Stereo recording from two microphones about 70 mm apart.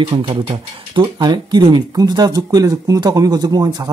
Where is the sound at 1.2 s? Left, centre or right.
Right.